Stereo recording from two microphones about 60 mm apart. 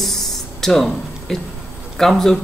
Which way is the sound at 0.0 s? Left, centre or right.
Centre.